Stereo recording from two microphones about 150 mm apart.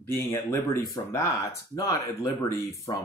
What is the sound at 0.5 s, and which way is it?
Speech, 20° left (ahead or behind).